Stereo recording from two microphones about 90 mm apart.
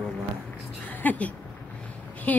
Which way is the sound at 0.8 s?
15° left (ahead or behind).